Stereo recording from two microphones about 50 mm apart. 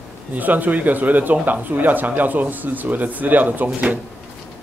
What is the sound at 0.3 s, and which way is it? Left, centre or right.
Speech, right.